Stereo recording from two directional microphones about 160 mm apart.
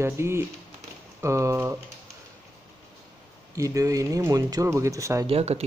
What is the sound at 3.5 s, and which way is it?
Speech, 20° right (ahead or behind).